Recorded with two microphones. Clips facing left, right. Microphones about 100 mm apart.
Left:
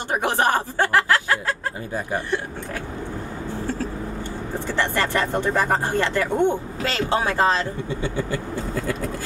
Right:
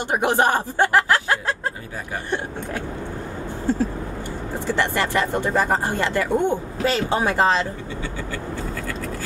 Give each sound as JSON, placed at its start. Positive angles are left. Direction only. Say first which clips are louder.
{"t": 0.1, "sound": "speech", "louder": "right 1 dB", "side_deg": -20}
{"t": 4.7, "sound": "speech", "louder": "even", "side_deg": -15}